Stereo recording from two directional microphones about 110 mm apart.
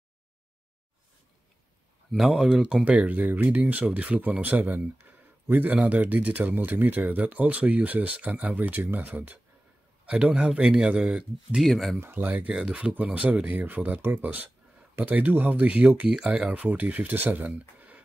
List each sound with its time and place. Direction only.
2.1 s speech: centre (ahead or behind)
12.0 s speech: 15° right (ahead or behind)